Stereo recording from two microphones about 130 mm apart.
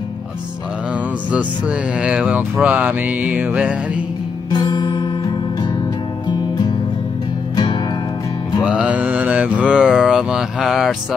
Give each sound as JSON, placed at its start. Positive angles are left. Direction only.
{"t": 2.0, "sound": "speech", "side_deg": -5}
{"t": 4.5, "sound": "music", "side_deg": 35}
{"t": 8.6, "sound": "speech", "side_deg": -10}